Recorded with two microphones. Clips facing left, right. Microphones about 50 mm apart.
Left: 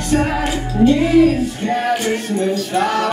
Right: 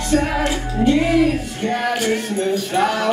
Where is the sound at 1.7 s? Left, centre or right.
Centre.